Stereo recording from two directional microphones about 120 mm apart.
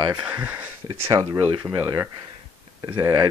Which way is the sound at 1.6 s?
30° right (ahead or behind).